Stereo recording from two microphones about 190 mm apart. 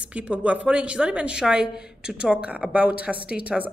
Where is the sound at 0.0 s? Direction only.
5° right (ahead or behind).